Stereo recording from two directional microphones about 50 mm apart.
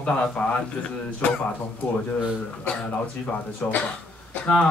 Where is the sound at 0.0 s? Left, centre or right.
Left.